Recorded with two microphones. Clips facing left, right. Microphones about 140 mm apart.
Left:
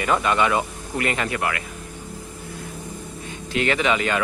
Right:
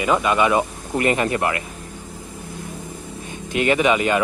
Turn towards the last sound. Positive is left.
turn(degrees=-15)  # may be behind; listen again after turning